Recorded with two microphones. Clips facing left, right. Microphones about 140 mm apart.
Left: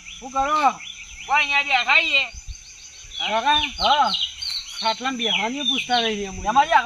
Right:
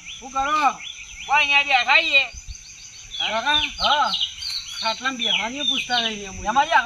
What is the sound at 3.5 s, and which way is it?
Speech, 35° left (ahead or behind).